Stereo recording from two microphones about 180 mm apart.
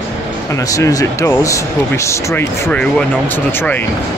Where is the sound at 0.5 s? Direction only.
20° left (ahead or behind).